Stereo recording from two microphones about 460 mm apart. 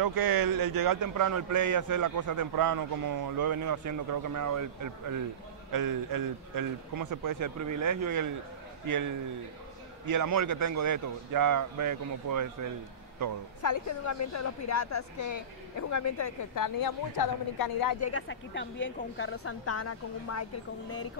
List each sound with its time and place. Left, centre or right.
0.0 s a man's voice: right
13.6 s a woman's voice: left
18.1 s a woman's voice: left